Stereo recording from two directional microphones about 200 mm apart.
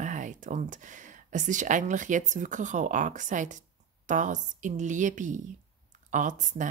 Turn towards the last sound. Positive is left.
turn(degrees=-40)  # may be behind; listen again after turning